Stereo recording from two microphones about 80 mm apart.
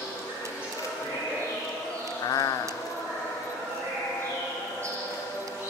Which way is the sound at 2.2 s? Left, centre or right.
Left.